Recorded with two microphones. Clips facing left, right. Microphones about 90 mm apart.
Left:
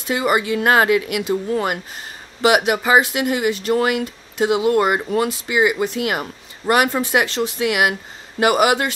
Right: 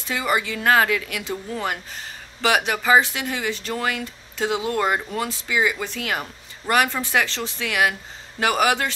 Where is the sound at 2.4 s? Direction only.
15° left (ahead or behind).